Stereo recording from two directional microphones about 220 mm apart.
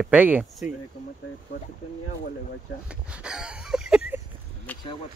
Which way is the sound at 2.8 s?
5° right (ahead or behind).